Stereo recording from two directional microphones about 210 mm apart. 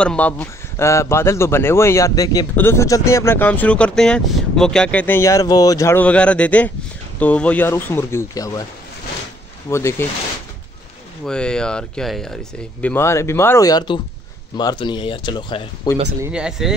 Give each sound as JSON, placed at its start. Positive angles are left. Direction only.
{"t": 0.0, "sound": "speech", "side_deg": 5}
{"t": 9.7, "sound": "speech", "side_deg": 15}
{"t": 11.2, "sound": "speech", "side_deg": 5}
{"t": 16.2, "sound": "speech", "side_deg": -5}